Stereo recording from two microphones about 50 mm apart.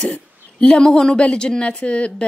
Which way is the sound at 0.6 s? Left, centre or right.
Centre.